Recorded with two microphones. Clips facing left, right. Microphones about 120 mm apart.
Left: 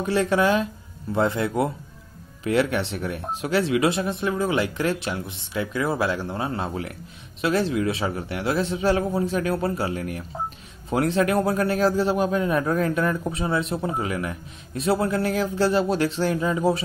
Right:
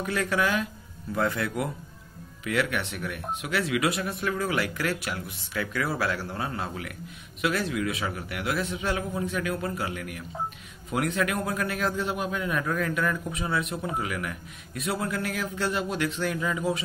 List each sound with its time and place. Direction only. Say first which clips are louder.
0.0 s a man's voice: left 6 dB; 30° left (ahead or behind)